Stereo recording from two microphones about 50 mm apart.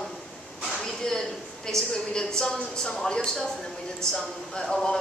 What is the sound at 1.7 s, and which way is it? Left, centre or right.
A woman's voice, centre.